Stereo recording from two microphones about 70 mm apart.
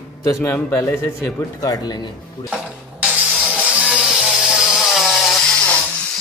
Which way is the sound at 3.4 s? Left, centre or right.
Centre.